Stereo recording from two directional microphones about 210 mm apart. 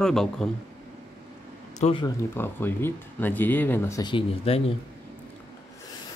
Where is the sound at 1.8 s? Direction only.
30° left (ahead or behind).